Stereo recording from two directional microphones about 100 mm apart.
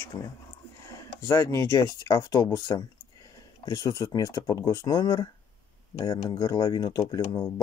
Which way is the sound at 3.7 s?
45° left (ahead or behind).